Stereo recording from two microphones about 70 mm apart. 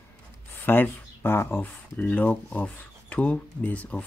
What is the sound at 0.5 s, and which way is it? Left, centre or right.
Speech, left.